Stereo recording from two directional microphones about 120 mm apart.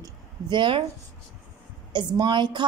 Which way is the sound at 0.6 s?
45° right (ahead or behind).